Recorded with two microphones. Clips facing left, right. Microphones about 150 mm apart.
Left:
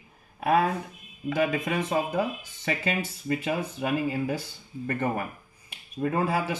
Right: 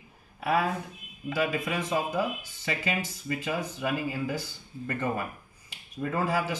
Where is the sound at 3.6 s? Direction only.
55° left (ahead or behind).